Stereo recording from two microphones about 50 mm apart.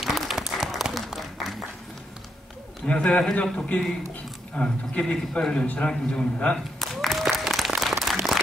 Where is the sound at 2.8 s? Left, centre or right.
Centre.